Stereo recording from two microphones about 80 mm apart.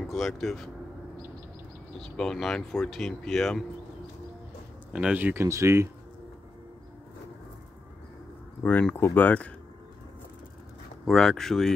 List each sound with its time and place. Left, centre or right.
0.0 s speech: centre
2.0 s speech: centre
4.9 s speech: centre
5.3 s speech: right
8.6 s speech: left
11.1 s speech: centre